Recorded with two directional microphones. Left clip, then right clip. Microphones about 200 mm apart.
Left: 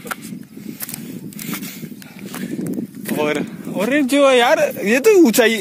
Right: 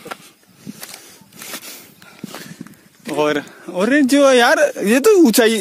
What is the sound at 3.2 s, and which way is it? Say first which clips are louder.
Vehicle: right 3 dB; 35° right (ahead or behind).